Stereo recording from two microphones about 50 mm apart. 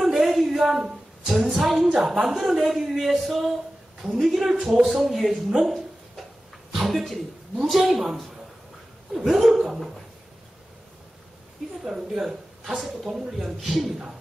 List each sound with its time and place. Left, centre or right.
0.1 s a sound: centre
1.3 s a woman's voice: centre
6.7 s a sound: centre
7.6 s a woman's voice: centre
9.3 s a woman's voice: centre
11.8 s a woman's voice: centre